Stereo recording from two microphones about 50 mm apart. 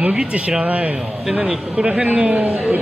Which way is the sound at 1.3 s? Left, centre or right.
Centre.